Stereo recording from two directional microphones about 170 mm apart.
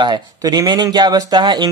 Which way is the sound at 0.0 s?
25° right (ahead or behind).